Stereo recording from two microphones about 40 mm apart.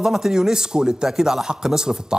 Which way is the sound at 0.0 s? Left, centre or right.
Centre.